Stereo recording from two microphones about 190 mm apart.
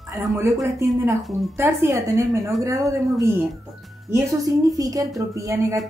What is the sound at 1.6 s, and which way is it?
Speech, 15° right (ahead or behind).